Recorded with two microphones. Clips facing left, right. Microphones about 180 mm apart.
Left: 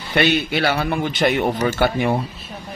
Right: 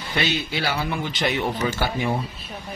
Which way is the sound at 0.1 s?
60° left (ahead or behind).